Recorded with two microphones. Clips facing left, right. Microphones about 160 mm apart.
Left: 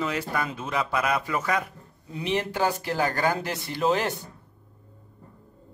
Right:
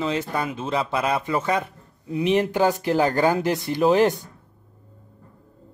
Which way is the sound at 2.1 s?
10° right (ahead or behind).